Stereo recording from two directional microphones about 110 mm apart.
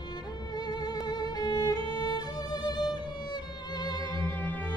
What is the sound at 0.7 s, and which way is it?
Music, 40° left (ahead or behind).